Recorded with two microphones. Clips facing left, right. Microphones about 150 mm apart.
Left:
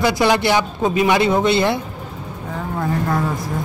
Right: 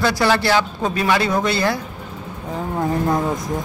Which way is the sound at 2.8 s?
20° right (ahead or behind).